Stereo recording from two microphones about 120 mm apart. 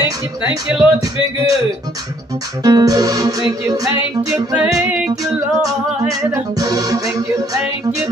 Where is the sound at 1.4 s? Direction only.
30° right (ahead or behind).